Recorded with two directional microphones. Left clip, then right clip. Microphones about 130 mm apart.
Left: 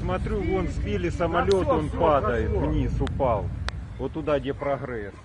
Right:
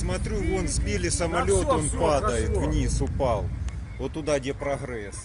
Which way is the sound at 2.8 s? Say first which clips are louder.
Left 1 dB; centre (ahead or behind).